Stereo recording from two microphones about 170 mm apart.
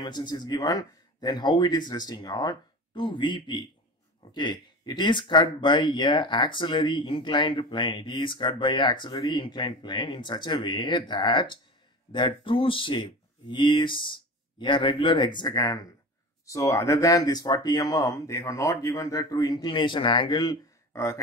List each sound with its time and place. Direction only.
0.0 s speech: 25° left (ahead or behind)